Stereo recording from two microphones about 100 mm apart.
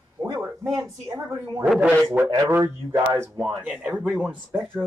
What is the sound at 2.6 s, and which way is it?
Speech, 40° right (ahead or behind).